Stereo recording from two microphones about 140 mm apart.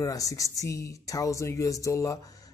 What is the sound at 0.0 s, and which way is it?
Speech, 25° left (ahead or behind).